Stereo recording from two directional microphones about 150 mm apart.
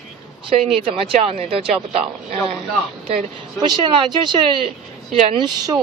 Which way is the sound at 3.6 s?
30° right (ahead or behind).